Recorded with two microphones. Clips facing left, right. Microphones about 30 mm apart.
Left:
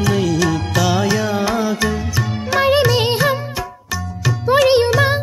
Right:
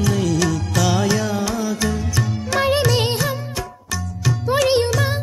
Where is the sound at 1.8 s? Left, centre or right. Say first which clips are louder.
Left 2 dB; centre.